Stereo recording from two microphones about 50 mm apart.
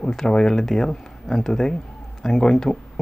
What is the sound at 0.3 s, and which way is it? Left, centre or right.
Speech, centre.